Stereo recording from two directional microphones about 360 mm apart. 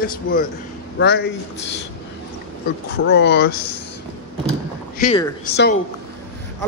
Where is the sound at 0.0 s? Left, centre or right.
Left.